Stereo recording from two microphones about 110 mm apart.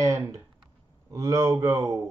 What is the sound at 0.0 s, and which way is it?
Speech, 30° right (ahead or behind).